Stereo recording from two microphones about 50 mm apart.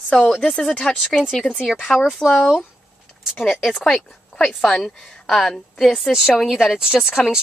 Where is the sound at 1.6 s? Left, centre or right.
Centre.